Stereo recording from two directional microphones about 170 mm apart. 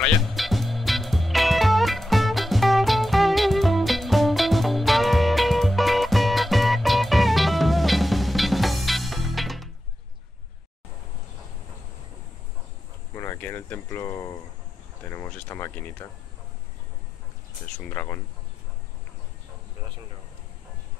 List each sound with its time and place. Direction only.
0.0 s music: centre (ahead or behind)
13.1 s a sound: 15° left (ahead or behind)
17.7 s speech: 10° left (ahead or behind)